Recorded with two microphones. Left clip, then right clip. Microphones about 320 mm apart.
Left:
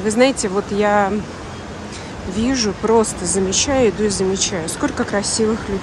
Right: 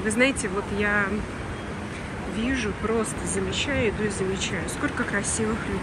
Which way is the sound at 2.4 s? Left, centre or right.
Centre.